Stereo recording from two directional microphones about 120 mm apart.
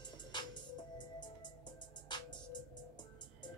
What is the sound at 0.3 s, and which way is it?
Music, 40° left (ahead or behind).